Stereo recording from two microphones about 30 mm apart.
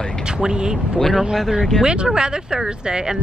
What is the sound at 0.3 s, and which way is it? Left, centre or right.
Speech, right.